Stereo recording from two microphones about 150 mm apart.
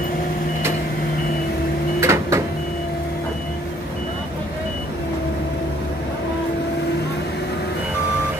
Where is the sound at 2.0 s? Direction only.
20° right (ahead or behind).